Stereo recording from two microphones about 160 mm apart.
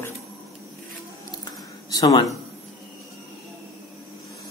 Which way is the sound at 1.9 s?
25° left (ahead or behind).